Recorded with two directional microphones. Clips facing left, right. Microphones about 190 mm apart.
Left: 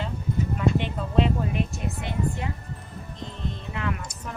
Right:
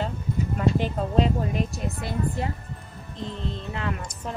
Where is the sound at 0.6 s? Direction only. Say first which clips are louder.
Right 3 dB; 40° right (ahead or behind).